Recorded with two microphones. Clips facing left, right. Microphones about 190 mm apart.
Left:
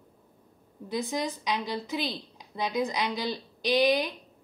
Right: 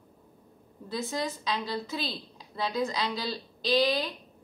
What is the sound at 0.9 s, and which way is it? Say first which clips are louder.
A woman's voice: left 2 dB; 15° left (ahead or behind).